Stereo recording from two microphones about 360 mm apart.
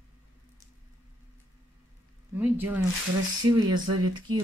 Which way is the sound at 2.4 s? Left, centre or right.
Centre.